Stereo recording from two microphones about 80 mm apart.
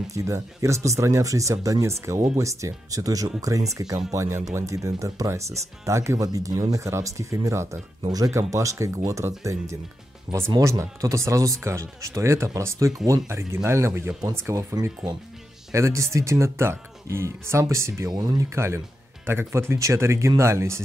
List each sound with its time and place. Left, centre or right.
0.1 s speech: right
4.1 s speech: right
10.3 s speech: centre
10.6 s speech: right
18.1 s speech: right
18.4 s speech: right